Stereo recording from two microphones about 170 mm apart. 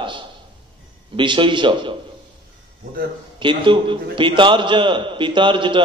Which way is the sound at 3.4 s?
30° right (ahead or behind).